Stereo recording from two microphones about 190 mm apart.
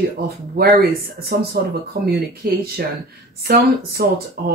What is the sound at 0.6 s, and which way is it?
Speech, 55° right (ahead or behind).